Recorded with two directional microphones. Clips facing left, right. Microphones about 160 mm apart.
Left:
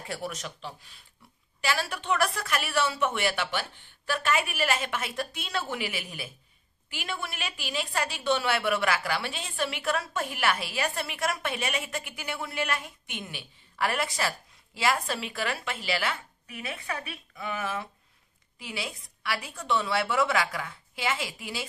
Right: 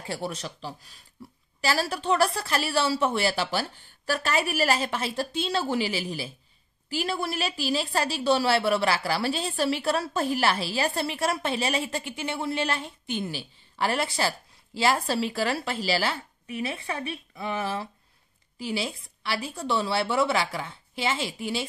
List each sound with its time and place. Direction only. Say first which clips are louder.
0.0 s a woman's voice: right 3 dB; 30° right (ahead or behind)